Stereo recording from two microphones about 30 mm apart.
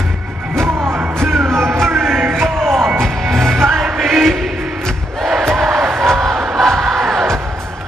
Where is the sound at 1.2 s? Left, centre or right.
Centre.